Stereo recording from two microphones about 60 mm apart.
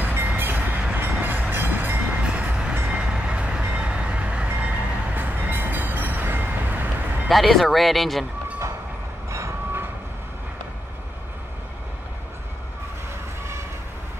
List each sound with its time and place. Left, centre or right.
0.0 s train: right
7.2 s speech: centre
9.3 s vehicle: right